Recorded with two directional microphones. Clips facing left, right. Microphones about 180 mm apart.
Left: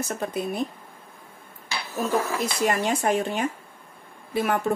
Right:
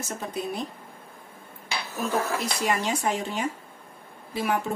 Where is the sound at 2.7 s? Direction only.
55° left (ahead or behind).